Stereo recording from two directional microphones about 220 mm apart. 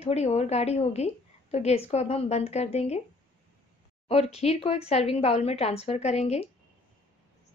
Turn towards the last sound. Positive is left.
turn(degrees=30)  # may be behind; listen again after turning